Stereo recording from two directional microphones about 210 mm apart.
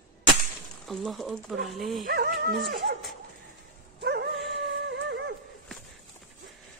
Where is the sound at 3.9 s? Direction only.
50° right (ahead or behind).